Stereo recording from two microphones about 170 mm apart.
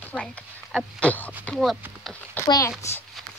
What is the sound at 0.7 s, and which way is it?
Speech, 10° left (ahead or behind).